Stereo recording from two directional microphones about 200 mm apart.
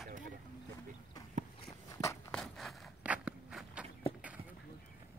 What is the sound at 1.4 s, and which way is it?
Walk, 35° right (ahead or behind).